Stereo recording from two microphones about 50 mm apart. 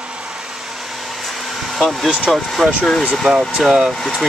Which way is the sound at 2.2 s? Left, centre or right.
Centre.